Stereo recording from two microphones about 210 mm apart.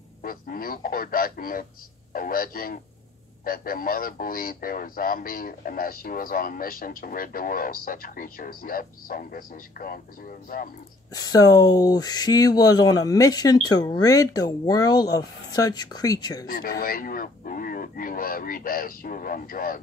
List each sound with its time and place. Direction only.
0.2 s speech: 45° left (ahead or behind)
11.1 s speech: 20° left (ahead or behind)
16.4 s speech: 45° left (ahead or behind)